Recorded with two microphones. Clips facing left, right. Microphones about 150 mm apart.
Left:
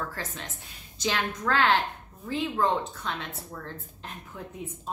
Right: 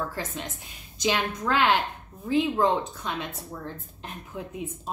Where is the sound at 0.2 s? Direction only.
15° right (ahead or behind).